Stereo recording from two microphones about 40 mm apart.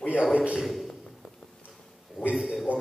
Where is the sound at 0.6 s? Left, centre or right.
Centre.